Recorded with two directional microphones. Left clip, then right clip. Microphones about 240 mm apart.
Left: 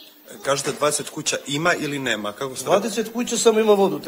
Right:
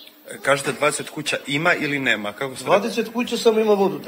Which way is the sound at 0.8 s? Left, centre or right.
Left.